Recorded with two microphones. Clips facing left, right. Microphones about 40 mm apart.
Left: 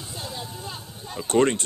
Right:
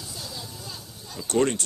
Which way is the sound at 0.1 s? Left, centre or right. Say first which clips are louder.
Left 6 dB; left.